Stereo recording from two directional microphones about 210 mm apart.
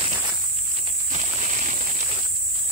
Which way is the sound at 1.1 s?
30° right (ahead or behind).